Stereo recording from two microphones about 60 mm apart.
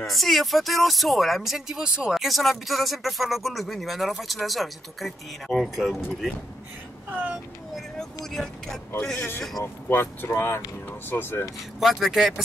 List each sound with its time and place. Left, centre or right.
0.0 s speech: centre
7.1 s speech: right
8.3 s speech: centre
9.8 s speech: left
11.8 s speech: centre